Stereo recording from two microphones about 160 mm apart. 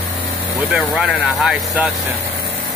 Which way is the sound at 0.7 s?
Centre (ahead or behind).